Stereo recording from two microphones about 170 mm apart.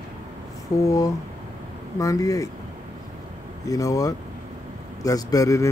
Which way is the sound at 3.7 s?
20° left (ahead or behind).